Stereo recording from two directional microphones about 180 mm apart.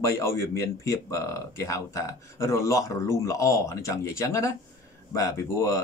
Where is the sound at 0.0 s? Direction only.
15° left (ahead or behind).